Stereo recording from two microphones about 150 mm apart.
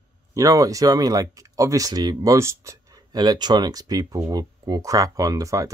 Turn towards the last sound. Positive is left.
turn(degrees=-20)  # may be behind; listen again after turning